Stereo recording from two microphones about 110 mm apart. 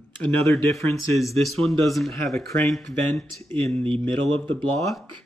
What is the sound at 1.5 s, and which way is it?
Speech, centre (ahead or behind).